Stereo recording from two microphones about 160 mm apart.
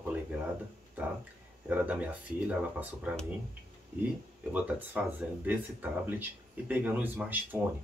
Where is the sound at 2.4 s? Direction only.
10° right (ahead or behind).